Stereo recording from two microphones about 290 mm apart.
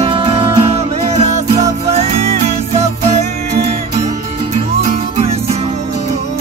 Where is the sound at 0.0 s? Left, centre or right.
Centre.